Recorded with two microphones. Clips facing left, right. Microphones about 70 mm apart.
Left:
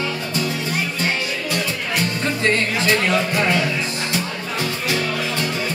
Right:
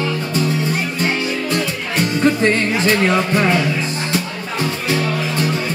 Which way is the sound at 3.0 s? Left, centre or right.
Right.